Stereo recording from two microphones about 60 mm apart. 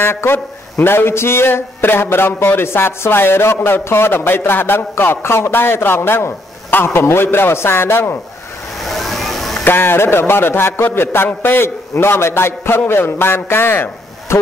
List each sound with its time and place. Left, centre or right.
0.0 s speech: left
8.8 s vehicle: centre
9.7 s speech: left